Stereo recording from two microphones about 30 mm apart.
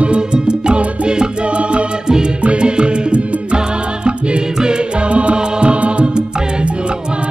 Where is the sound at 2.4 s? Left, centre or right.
Right.